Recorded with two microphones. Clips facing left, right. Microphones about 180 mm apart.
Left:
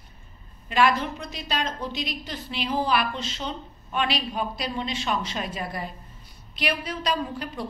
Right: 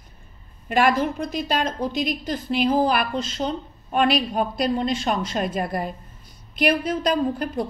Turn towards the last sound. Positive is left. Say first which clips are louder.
# right 7 dB
turn(degrees=-50)  # may be behind; listen again after turning